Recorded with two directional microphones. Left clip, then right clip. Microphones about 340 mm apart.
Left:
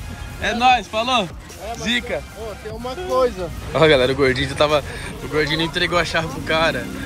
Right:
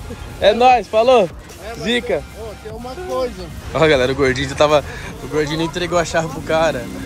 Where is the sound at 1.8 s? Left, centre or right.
Centre.